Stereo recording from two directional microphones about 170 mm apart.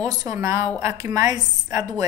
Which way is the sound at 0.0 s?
20° right (ahead or behind).